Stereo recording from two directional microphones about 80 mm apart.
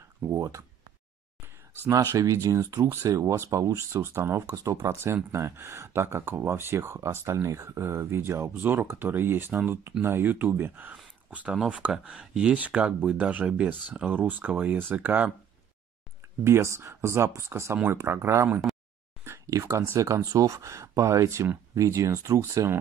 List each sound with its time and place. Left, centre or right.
0.3 s speech: right
2.0 s speech: right; by 15.3 s centre
16.4 s speech: right
19.2 s a sound: right
19.7 s speech: right